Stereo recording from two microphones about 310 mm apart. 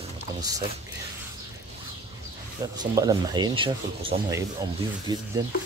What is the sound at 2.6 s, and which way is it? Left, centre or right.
Speech, centre.